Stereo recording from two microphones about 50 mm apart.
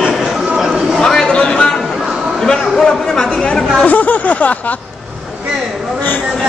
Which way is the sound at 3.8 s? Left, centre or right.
Left.